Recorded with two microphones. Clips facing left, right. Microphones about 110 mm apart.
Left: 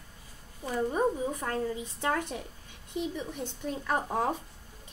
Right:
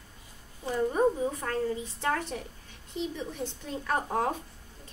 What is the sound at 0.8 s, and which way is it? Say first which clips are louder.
A woman's voice: right 2 dB; 10° left (ahead or behind).